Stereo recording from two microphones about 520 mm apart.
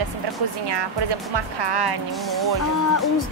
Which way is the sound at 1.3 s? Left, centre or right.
Right.